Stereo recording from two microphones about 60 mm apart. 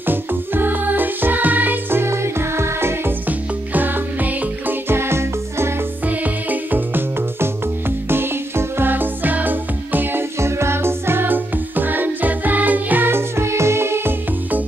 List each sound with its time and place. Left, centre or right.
0.0 s music: right
3.3 s music: right
4.8 s music: right
6.0 s music: right
10.4 s music: right